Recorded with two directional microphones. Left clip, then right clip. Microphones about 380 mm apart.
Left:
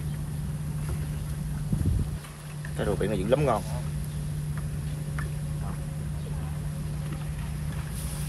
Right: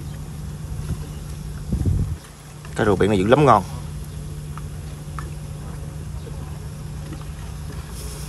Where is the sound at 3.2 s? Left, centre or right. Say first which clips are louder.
Right 9 dB; centre.